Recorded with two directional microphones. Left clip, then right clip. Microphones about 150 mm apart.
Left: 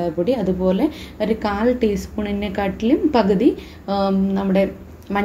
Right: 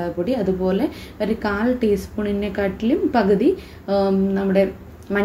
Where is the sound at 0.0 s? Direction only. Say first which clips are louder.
Left 2 dB; 35° left (ahead or behind).